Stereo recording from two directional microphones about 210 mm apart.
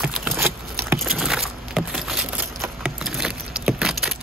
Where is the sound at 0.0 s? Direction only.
5° right (ahead or behind).